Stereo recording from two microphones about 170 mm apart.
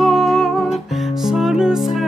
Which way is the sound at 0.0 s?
Centre (ahead or behind).